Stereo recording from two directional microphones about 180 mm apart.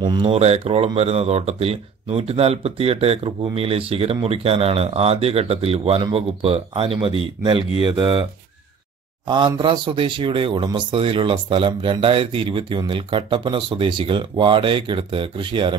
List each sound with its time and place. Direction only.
0.0 s speech: 25° right (ahead or behind)
9.6 s speech: 30° right (ahead or behind)